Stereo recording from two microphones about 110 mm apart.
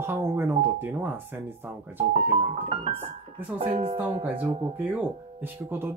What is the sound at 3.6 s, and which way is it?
Speech, 60° right (ahead or behind).